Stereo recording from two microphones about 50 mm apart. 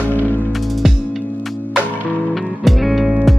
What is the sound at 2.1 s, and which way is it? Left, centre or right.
Music, left.